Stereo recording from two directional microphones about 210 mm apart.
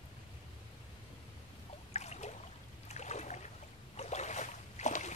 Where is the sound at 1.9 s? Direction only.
30° left (ahead or behind).